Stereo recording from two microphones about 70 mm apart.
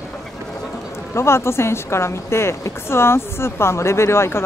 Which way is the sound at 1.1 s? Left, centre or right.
Left.